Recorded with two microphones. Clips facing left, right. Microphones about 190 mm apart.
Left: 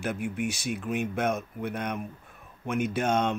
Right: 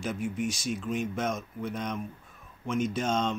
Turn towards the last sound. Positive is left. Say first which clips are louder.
# left 2 dB
turn(degrees=60)  # may be behind; listen again after turning